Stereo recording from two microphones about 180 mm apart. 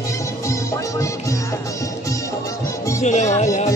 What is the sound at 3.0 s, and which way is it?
Music, 40° left (ahead or behind).